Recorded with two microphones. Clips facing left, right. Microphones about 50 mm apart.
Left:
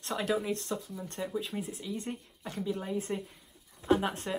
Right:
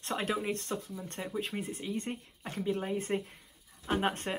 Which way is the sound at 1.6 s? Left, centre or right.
Right.